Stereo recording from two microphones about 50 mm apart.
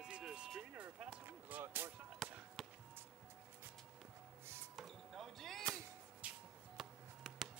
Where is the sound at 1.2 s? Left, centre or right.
Right.